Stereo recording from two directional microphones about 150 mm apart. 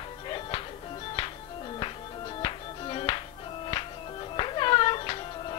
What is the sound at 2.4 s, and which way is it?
Music, 35° left (ahead or behind).